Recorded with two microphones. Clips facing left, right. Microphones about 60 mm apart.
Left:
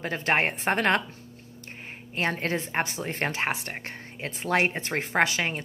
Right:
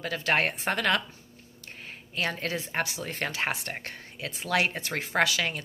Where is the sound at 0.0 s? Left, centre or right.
Left.